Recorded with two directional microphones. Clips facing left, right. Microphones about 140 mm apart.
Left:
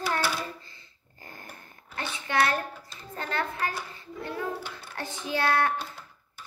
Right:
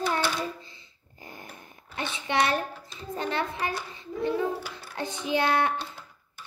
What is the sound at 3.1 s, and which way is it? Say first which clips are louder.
Speech: right 2 dB; 20° right (ahead or behind).